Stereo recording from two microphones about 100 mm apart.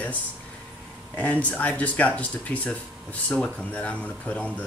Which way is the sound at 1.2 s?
15° left (ahead or behind).